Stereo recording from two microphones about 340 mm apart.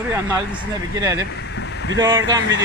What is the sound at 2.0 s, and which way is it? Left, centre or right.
Speech, centre.